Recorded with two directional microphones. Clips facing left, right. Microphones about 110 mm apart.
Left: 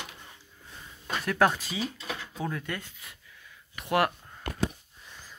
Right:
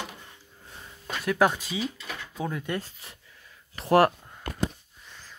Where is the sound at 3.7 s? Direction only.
35° right (ahead or behind).